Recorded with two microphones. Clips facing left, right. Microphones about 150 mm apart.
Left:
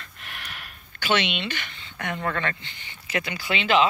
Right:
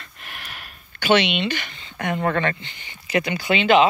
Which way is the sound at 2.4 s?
20° right (ahead or behind).